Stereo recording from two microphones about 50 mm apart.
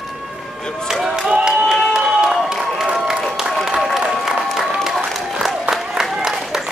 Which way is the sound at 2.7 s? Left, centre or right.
Centre.